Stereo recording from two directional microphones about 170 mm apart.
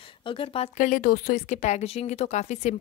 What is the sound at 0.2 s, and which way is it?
Speech, 30° left (ahead or behind).